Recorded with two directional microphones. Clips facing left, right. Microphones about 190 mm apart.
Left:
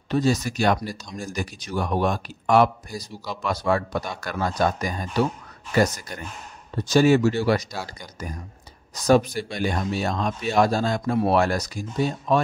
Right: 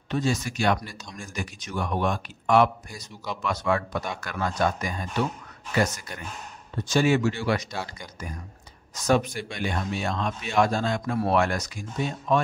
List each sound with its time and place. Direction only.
0.1 s speech: 40° left (ahead or behind)
8.9 s speech: 35° left (ahead or behind)